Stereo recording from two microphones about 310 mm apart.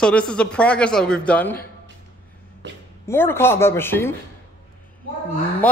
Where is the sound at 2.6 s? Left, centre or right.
Right.